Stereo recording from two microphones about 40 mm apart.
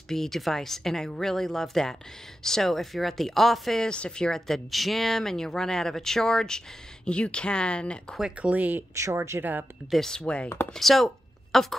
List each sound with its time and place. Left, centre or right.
0.1 s a woman's voice: centre
3.8 s speech: left
4.5 s speech: centre
7.1 s speech: left
8.4 s speech: right
10.1 s speech: left
10.7 s a woman's voice: centre